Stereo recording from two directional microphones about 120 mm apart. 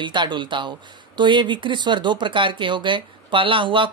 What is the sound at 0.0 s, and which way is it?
A woman's voice, 40° right (ahead or behind).